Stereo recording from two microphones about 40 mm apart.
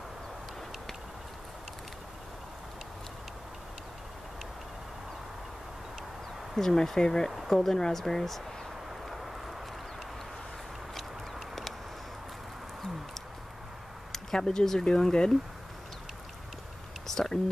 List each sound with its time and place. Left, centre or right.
6.6 s speech: centre
9.1 s vehicle: centre
14.1 s speech: centre
17.1 s whispering: centre